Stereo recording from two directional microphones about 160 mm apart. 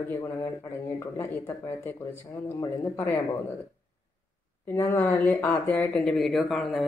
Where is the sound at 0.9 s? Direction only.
15° left (ahead or behind).